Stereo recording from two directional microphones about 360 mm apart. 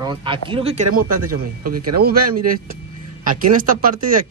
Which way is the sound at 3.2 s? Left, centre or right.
Right.